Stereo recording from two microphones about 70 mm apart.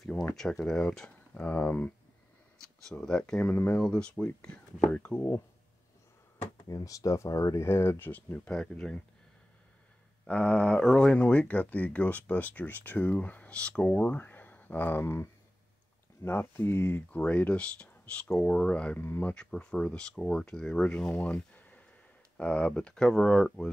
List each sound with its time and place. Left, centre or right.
0.4 s speech: centre
2.6 s speech: centre
3.4 s speech: left
3.7 s speech: centre
6.7 s speech: left
7.6 s speech: left
8.5 s speech: centre
10.2 s speech: centre
18.9 s speech: left
19.3 s speech: centre
21.2 s a sound: centre
22.4 s speech: centre